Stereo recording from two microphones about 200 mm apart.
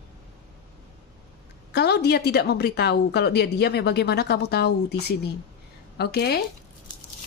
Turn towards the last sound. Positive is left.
turn(degrees=55)  # may be behind; listen again after turning